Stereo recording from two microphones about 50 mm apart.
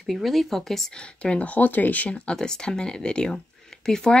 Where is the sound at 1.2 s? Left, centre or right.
Left.